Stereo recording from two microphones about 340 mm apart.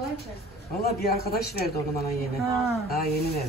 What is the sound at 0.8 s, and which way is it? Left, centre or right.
Speech, left.